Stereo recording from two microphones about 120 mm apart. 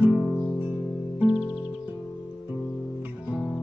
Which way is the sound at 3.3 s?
5° left (ahead or behind).